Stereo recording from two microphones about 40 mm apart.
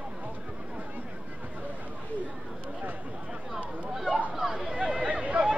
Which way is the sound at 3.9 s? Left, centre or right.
Centre.